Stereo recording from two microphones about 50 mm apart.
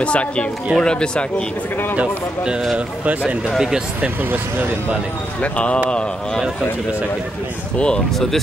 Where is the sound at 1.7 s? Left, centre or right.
Left.